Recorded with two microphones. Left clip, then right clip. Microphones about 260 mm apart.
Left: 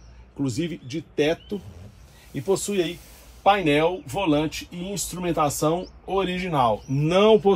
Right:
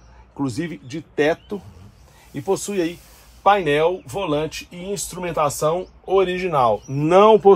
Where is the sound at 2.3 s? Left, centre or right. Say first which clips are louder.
Right 2 dB; right.